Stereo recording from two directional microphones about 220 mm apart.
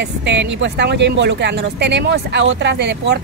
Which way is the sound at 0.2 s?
55° right (ahead or behind).